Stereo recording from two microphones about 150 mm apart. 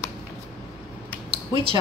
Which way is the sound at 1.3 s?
35° right (ahead or behind).